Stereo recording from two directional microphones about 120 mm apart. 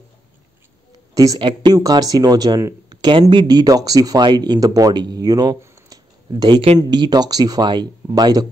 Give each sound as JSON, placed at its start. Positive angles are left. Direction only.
{"t": 1.1, "sound": "speech", "side_deg": -30}